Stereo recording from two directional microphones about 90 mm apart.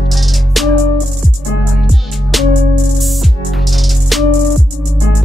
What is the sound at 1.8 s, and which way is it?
Music, centre (ahead or behind).